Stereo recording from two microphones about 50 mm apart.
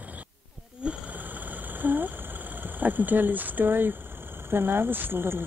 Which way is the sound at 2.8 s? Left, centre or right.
Right.